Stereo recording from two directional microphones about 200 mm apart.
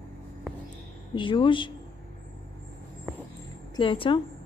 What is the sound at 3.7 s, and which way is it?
Speech, 25° left (ahead or behind).